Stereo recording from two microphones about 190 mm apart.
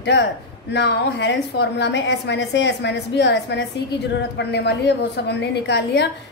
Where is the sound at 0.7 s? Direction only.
65° left (ahead or behind).